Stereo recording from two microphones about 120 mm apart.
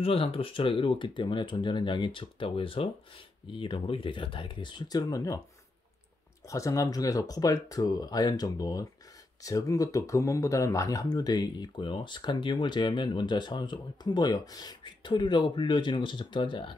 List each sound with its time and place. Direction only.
0.0 s speech: 50° left (ahead or behind); by 5.4 s 30° left (ahead or behind)
6.5 s speech: 25° left (ahead or behind); by 16.7 s 40° left (ahead or behind)